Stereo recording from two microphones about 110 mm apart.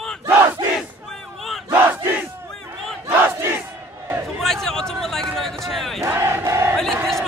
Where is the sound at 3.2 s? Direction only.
20° right (ahead or behind).